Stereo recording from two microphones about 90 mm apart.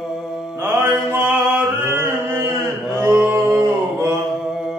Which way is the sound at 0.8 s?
20° right (ahead or behind).